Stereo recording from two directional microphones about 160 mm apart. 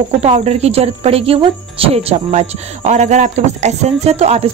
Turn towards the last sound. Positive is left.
turn(degrees=-40)  # may be behind; listen again after turning